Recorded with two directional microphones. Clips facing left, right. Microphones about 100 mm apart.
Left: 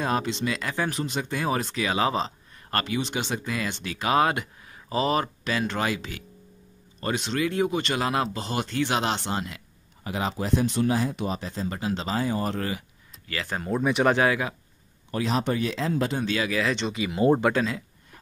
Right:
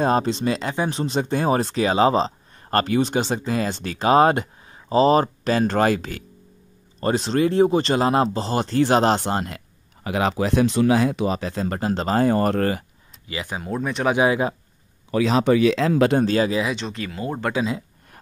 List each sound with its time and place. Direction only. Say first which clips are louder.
0.0 s speech: right 6 dB; 35° right (ahead or behind)
7.0 s speech: right 7 dB; 35° right (ahead or behind)
10.0 s speech: right 7 dB; 85° right
11.8 s speech: right 8 dB; 50° right (ahead or behind)
13.3 s speech: right 2 dB; 15° right (ahead or behind)
13.6 s speech: left 2 dB; centre (ahead or behind)
14.1 s speech: right 4 dB; 20° right (ahead or behind)
15.2 s speech: right 9 dB; 90° right
16.2 s speech: right 8 dB; 35° right (ahead or behind)
16.7 s speech: left 1 dB; 5° left (ahead or behind)
17.1 s speech: left 12 dB; 25° left (ahead or behind)